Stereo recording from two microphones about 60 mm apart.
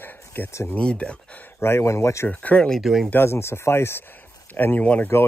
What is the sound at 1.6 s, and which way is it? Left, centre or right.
Speech, left.